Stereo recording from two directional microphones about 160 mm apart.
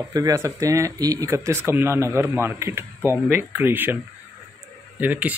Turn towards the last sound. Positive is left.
turn(degrees=-10)  # may be behind; listen again after turning